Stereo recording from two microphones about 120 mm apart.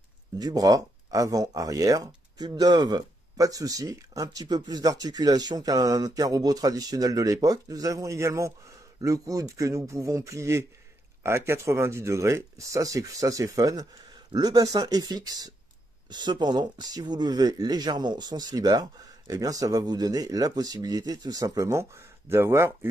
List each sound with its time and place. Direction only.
0.4 s speech: 35° right (ahead or behind)